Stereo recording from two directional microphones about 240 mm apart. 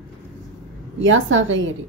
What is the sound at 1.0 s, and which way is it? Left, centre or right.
Speech, right.